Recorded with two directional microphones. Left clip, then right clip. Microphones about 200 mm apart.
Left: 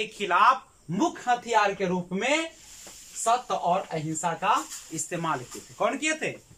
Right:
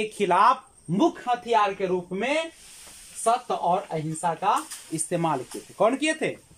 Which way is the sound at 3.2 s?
15° right (ahead or behind).